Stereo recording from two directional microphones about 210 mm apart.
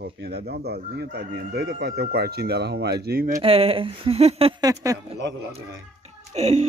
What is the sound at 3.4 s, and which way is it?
Speech, 25° right (ahead or behind).